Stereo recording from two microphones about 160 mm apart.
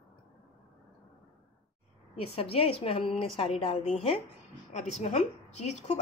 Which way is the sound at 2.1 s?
40° left (ahead or behind).